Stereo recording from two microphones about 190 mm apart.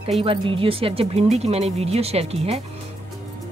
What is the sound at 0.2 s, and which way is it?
Speech, 30° right (ahead or behind).